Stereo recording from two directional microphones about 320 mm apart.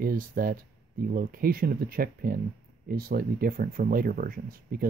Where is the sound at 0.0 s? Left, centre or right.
Right.